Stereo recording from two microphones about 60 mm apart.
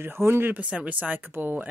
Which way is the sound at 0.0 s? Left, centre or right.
Right.